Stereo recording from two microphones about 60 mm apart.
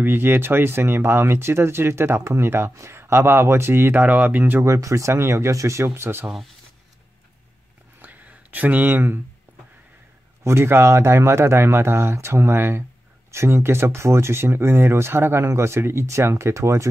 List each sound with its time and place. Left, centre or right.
0.0 s speech: right
4.6 s speech: right
5.9 s speech: right
8.0 s a sound: right
10.4 s speech: right